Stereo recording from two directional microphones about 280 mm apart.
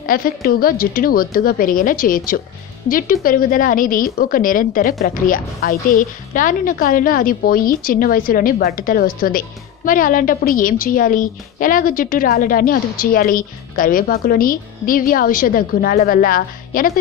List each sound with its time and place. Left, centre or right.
0.0 s a woman's voice: left